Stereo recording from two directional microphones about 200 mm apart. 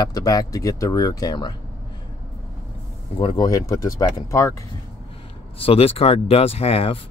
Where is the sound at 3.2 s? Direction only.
25° left (ahead or behind).